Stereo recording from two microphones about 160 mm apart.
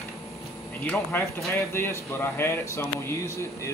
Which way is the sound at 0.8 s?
10° left (ahead or behind).